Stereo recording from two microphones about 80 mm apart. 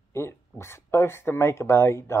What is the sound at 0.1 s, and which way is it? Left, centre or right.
Speech, left.